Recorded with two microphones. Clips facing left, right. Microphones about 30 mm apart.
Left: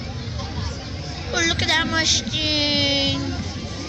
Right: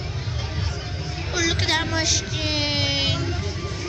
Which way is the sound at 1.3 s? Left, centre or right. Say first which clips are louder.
Left 2 dB; left.